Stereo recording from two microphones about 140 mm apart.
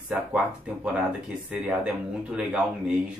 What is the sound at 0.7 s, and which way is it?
Speech, 10° right (ahead or behind).